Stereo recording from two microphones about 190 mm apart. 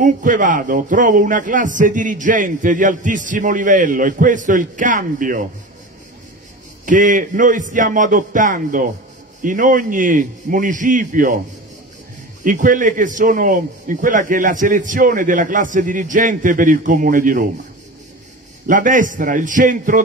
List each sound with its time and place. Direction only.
0.0 s a man's voice: 45° right (ahead or behind)
6.9 s a man's voice: 45° right (ahead or behind)
12.4 s a man's voice: 45° right (ahead or behind)
18.7 s a man's voice: 45° right (ahead or behind)